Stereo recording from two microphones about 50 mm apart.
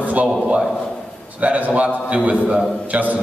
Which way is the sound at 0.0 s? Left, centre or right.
Right.